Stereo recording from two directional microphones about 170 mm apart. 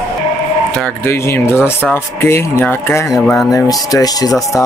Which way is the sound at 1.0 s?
15° left (ahead or behind).